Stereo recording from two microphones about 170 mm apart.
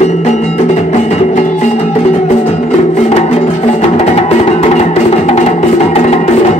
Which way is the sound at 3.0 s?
40° left (ahead or behind).